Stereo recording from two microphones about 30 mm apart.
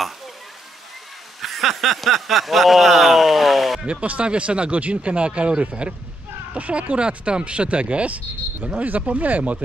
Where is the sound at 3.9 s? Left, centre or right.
Right.